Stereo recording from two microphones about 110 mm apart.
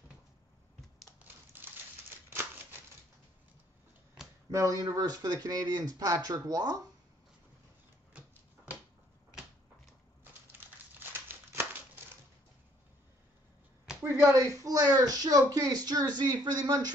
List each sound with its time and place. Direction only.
1.2 s crushing: 20° right (ahead or behind)
2.2 s a sound: 20° right (ahead or behind)
4.5 s speech: 30° right (ahead or behind)
11.0 s crumpling: 20° right (ahead or behind)
14.3 s speech: 30° right (ahead or behind)